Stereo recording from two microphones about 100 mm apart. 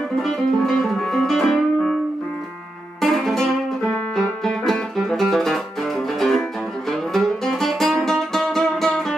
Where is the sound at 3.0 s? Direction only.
Centre (ahead or behind).